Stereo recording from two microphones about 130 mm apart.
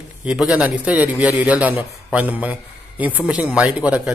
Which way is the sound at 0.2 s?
10° right (ahead or behind).